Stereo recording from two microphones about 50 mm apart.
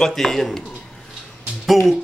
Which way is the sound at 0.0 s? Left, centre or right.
Centre.